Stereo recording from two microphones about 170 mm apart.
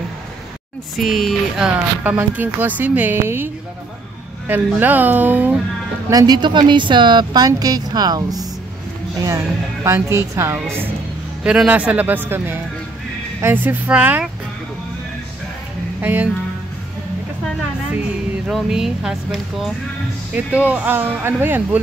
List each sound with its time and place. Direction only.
0.9 s speech: centre (ahead or behind)
4.5 s speech: 10° right (ahead or behind)
6.0 s speech: 20° right (ahead or behind)
9.8 s speech: 15° right (ahead or behind)
16.0 s speech: 10° right (ahead or behind)
18.5 s speech: 5° right (ahead or behind)